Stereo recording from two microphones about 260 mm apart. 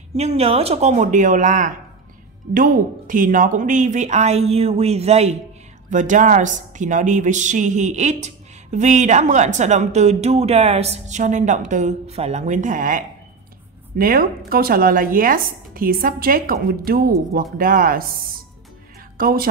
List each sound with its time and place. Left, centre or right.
0.1 s speech: right
19.1 s speech: right